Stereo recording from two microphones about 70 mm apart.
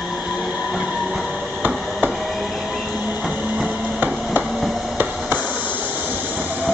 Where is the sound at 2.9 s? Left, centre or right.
Right.